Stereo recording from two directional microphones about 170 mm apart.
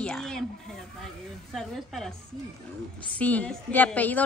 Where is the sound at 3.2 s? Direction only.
10° left (ahead or behind).